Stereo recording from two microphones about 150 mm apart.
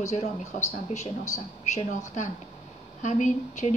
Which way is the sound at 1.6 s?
50° left (ahead or behind).